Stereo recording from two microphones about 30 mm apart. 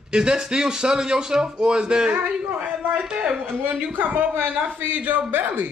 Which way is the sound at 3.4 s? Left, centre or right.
Right.